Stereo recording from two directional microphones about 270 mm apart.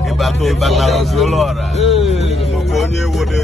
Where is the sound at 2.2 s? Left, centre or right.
Left.